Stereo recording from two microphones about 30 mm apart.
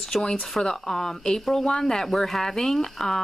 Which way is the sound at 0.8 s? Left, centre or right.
Centre.